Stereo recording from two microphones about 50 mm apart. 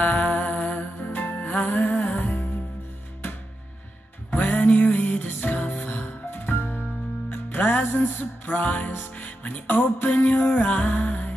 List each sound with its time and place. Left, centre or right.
0.0 s music: left
4.3 s music: left